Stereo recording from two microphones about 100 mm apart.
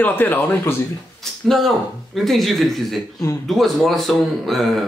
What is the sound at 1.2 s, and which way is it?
Speech, centre (ahead or behind).